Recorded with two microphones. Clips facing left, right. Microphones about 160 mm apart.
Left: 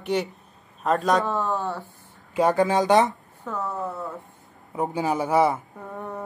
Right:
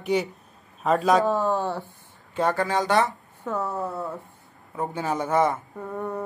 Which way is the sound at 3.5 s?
10° right (ahead or behind).